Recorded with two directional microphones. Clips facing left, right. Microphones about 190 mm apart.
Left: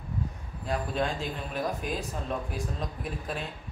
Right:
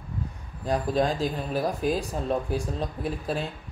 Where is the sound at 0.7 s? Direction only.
35° right (ahead or behind).